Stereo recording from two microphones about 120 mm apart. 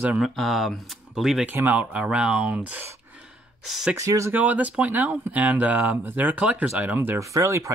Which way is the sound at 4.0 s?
25° right (ahead or behind).